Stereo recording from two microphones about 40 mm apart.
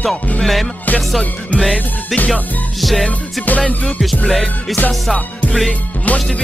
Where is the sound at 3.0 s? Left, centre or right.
Left.